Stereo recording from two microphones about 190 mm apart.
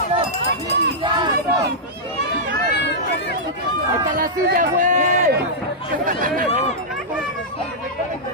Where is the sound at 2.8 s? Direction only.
65° left (ahead or behind).